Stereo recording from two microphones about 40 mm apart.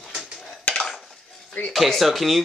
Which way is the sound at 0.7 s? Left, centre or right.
Centre.